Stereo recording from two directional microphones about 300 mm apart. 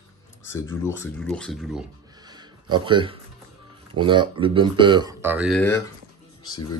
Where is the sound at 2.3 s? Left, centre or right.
Centre.